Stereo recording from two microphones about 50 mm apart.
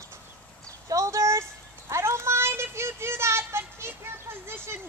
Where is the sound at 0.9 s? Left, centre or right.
Right.